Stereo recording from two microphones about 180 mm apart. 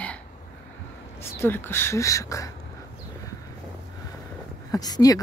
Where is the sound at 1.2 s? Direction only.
15° left (ahead or behind).